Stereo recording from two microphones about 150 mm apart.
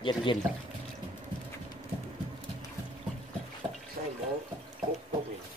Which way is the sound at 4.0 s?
75° right (ahead or behind).